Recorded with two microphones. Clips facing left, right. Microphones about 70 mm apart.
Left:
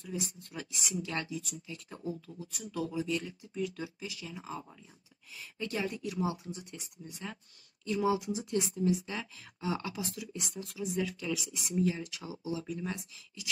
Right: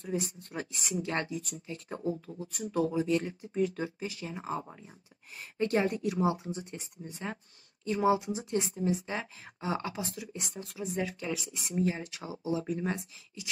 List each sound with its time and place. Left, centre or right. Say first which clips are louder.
0.0 s speech: right 5 dB; right